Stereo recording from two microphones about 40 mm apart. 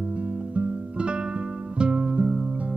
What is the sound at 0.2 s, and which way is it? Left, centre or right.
Music, right.